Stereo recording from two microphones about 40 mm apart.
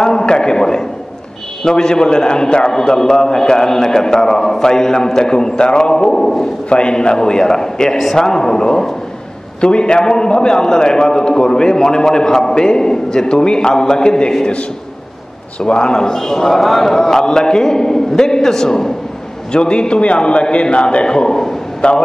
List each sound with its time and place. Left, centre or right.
0.0 s a sound: centre
1.6 s a man's voice: centre
6.7 s a man's voice: left
15.6 s a man's voice: left
21.8 s a man's voice: left